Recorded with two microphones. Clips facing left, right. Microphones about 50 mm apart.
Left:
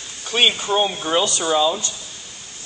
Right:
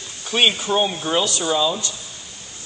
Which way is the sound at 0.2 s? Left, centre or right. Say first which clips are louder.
Even; centre.